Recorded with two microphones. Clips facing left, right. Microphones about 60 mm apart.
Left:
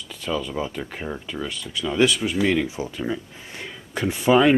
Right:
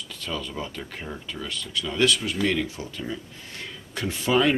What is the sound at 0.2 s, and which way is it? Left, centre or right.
Speech, centre.